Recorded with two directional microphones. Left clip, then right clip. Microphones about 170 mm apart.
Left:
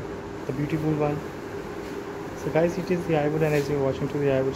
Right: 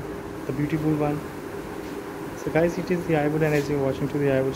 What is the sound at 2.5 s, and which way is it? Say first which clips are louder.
Speech: right 1 dB; centre (ahead or behind).